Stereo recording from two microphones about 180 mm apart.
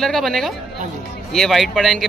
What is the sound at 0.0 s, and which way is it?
Speech, centre (ahead or behind).